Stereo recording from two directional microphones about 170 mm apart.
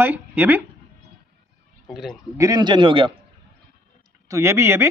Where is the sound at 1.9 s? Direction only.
Centre (ahead or behind).